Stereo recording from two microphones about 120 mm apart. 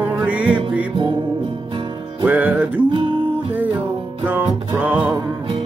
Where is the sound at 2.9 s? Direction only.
45° right (ahead or behind).